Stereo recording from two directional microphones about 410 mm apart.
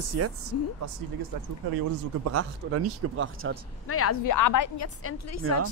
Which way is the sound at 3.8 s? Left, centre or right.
Left.